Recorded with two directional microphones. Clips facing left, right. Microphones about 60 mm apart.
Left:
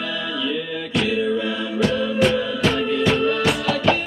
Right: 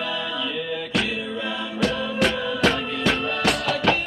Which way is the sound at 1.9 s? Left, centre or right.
Right.